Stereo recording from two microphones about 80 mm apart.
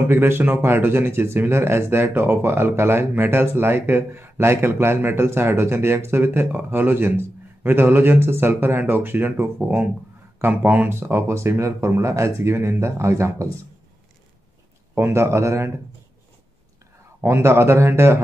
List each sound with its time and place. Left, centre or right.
0.1 s speech: right
15.0 s speech: right
17.2 s speech: right